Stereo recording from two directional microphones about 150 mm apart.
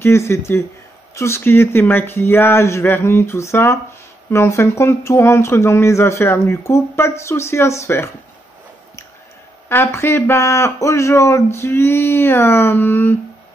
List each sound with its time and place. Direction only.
0.0 s speech: 15° left (ahead or behind)
9.7 s speech: 15° left (ahead or behind)